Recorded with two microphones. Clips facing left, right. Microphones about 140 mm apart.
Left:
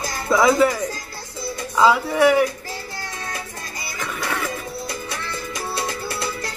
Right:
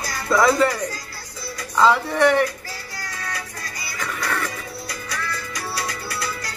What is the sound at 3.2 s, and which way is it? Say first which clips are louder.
Music: left 1 dB; 25° left (ahead or behind).